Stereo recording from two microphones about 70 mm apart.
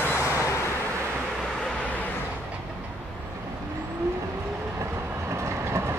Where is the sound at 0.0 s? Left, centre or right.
Left.